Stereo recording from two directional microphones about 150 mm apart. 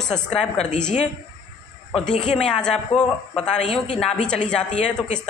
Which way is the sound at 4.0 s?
5° left (ahead or behind).